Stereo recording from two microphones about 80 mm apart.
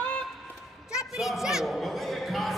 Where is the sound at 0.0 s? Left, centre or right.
Centre.